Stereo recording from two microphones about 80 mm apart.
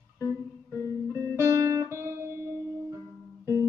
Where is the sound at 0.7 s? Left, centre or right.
Right.